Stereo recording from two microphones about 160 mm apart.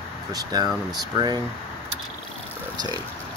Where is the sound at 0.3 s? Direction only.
25° right (ahead or behind).